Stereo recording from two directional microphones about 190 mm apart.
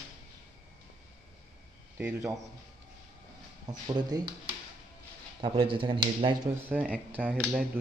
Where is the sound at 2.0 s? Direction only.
10° right (ahead or behind).